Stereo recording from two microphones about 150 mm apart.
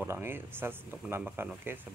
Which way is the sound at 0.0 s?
15° right (ahead or behind).